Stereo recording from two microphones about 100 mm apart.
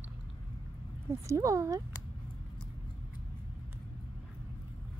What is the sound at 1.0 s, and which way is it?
Speech, 30° right (ahead or behind).